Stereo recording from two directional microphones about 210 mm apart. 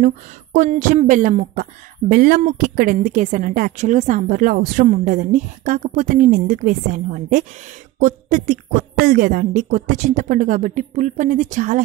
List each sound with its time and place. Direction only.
0.0 s speech: 35° right (ahead or behind)